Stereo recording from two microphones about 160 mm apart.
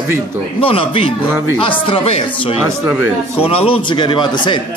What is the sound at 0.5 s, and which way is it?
Speech, 35° left (ahead or behind).